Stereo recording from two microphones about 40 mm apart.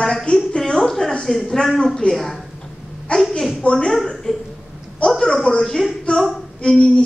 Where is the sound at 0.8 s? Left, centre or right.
Centre; by 3.8 s left.